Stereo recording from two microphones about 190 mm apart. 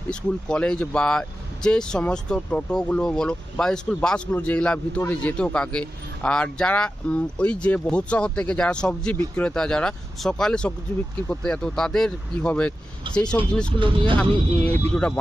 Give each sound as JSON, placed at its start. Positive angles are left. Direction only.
{"t": 0.1, "sound": "speech", "side_deg": 5}
{"t": 13.7, "sound": "speech", "side_deg": -25}
{"t": 14.1, "sound": "speech", "side_deg": 10}